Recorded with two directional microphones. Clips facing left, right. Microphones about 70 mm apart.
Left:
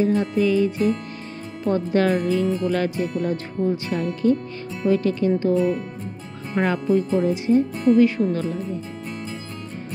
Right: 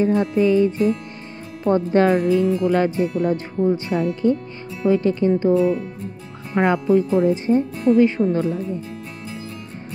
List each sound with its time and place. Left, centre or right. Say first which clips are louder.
0.0 s music: right 2 dB; right
1.6 s speech: right 3 dB; right
6.5 s speech: right 3 dB; right